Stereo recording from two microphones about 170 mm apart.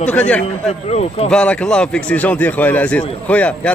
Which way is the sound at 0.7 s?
40° left (ahead or behind).